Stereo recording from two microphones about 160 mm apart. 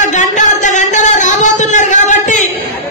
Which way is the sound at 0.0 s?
50° left (ahead or behind).